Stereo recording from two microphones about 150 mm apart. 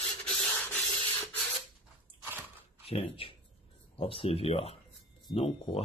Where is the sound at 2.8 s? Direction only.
40° left (ahead or behind).